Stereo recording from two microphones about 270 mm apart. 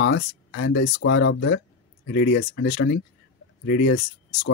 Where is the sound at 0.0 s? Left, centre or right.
Left.